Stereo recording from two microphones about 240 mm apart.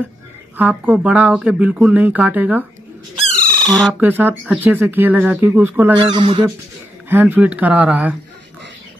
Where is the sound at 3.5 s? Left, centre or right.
Centre.